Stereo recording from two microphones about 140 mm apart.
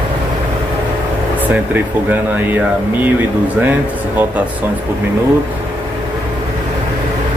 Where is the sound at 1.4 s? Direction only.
10° right (ahead or behind).